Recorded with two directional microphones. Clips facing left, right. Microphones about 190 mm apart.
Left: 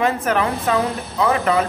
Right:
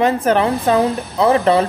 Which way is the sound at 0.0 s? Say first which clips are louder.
Right 4 dB; 30° right (ahead or behind).